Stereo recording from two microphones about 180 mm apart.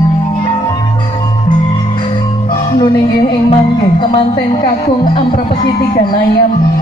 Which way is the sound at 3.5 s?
30° left (ahead or behind).